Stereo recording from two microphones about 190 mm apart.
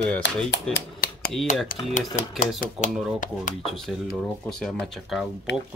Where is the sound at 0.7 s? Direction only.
50° left (ahead or behind).